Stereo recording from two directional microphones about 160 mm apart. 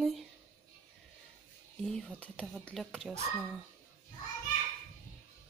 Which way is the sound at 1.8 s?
5° left (ahead or behind).